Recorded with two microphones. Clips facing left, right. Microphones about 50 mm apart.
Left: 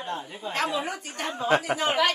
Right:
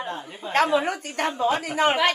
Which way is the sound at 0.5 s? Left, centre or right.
Right.